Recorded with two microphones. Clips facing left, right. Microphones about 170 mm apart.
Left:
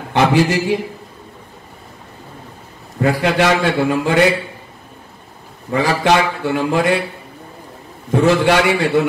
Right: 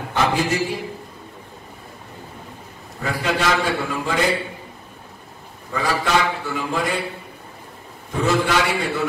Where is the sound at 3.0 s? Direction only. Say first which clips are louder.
Left 8 dB; 70° left (ahead or behind).